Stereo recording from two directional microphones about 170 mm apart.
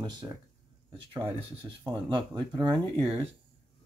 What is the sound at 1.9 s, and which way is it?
Speech, 25° right (ahead or behind).